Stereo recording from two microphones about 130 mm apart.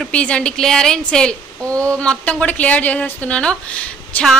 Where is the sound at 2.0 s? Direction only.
10° left (ahead or behind).